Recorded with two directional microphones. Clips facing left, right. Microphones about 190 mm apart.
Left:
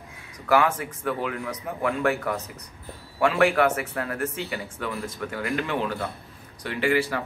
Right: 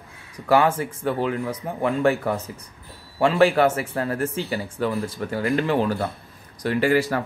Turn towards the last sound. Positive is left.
turn(degrees=-40)  # may be behind; listen again after turning